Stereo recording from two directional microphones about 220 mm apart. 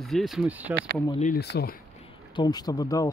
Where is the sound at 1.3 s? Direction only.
45° left (ahead or behind).